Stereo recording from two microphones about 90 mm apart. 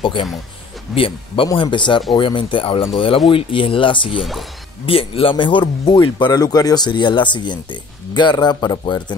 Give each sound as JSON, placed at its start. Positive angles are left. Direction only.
{"t": 0.0, "sound": "speech", "side_deg": 70}
{"t": 0.9, "sound": "speech", "side_deg": 80}
{"t": 1.5, "sound": "speech", "side_deg": 60}
{"t": 4.2, "sound": "speech", "side_deg": 0}
{"t": 4.8, "sound": "speech", "side_deg": 90}